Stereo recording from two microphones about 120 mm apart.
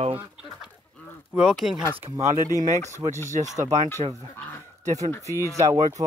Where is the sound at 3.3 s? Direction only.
85° right.